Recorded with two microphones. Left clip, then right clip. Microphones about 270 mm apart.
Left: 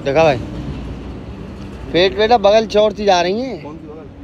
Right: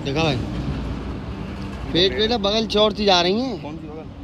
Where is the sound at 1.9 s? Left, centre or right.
Centre.